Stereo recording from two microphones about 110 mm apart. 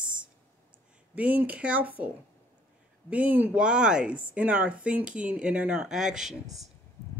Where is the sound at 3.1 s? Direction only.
15° right (ahead or behind).